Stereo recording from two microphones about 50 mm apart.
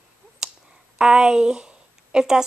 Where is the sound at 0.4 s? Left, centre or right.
Centre.